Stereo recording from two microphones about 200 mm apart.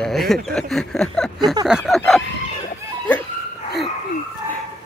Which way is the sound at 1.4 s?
20° right (ahead or behind).